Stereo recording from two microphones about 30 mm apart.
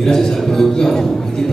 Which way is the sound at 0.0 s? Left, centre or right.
Centre.